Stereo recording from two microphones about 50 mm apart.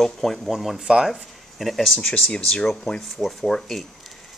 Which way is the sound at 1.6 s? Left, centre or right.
Centre.